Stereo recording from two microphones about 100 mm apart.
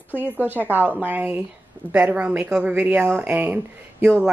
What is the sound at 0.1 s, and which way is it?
Speech, 20° left (ahead or behind).